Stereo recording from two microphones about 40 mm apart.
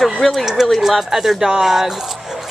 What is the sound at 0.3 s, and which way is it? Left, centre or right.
Speech, centre.